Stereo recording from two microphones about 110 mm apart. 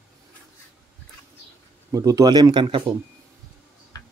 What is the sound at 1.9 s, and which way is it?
Speech, 30° right (ahead or behind).